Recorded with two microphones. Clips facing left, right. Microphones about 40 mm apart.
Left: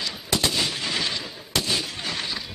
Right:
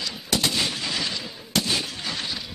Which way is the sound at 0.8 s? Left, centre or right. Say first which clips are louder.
Left 1 dB; left.